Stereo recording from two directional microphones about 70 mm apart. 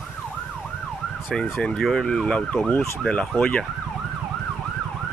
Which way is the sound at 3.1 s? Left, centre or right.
Centre.